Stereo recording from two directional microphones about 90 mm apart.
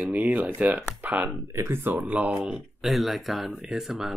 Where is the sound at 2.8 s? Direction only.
Centre (ahead or behind).